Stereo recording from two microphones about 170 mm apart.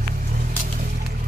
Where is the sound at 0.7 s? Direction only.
50° right (ahead or behind).